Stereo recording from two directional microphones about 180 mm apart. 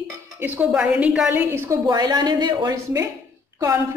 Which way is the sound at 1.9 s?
25° right (ahead or behind).